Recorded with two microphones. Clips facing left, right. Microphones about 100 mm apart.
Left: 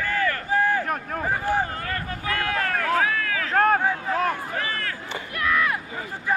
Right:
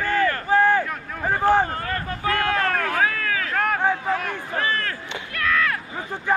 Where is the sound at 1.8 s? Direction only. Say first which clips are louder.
Right 3 dB; 35° right (ahead or behind).